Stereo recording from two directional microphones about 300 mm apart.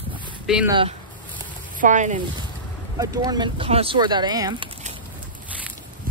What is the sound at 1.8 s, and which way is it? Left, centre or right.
Speech, right.